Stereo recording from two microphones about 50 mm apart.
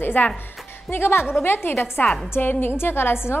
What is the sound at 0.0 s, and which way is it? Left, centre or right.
A woman's voice, left.